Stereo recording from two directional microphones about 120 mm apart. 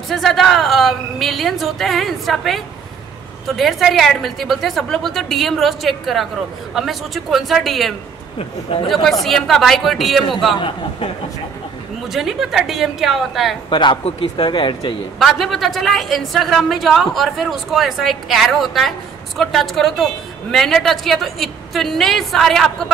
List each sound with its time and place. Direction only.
0.1 s a woman's voice: centre (ahead or behind)
8.4 s speech: 45° left (ahead or behind)
9.2 s a woman's voice: centre (ahead or behind)
12.1 s a woman's voice: centre (ahead or behind)
13.7 s speech: 40° left (ahead or behind)
15.1 s a woman's voice: centre (ahead or behind)